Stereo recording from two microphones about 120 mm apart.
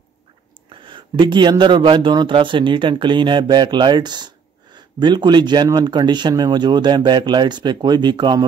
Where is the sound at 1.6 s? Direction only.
45° right (ahead or behind).